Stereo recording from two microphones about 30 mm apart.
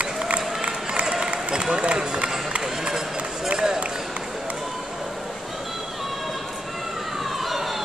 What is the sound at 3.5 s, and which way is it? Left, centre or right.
Run, centre.